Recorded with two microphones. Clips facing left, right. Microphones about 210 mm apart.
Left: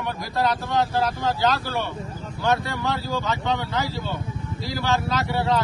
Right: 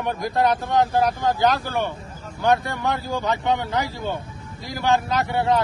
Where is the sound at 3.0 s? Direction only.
50° right (ahead or behind).